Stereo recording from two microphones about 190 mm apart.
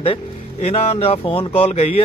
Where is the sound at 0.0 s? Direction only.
30° left (ahead or behind).